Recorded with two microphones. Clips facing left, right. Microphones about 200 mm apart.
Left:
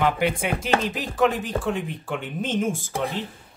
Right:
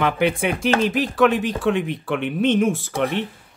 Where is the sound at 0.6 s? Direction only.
70° right (ahead or behind).